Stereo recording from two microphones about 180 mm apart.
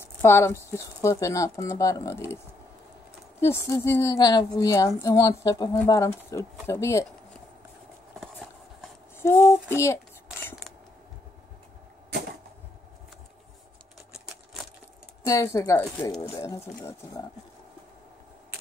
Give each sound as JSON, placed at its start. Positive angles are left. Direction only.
{"t": 0.0, "sound": "a woman's voice", "side_deg": 15}
{"t": 9.2, "sound": "speech", "side_deg": 15}
{"t": 14.3, "sound": "a sound", "side_deg": 0}
{"t": 15.2, "sound": "speech", "side_deg": 20}
{"t": 16.2, "sound": "a woman's voice", "side_deg": 30}
{"t": 16.4, "sound": "speech", "side_deg": 15}